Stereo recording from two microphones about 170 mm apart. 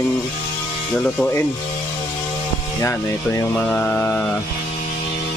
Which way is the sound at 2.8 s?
15° left (ahead or behind).